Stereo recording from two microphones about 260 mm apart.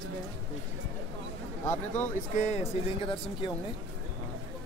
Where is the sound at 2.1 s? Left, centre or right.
Left.